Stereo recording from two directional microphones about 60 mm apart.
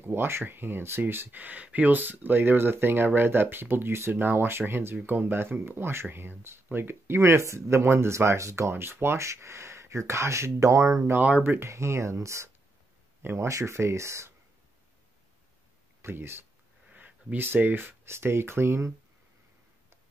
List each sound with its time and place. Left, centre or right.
0.0 s speech: right
8.8 s speech: right
11.1 s speech: right
11.4 s speech: right
11.7 s speech: right
13.2 s speech: right
13.5 s speech: right
16.0 s speech: right
16.9 s speech: right
18.0 s speech: right